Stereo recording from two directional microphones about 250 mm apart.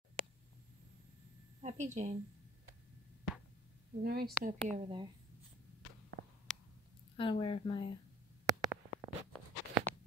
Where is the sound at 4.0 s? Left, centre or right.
Right.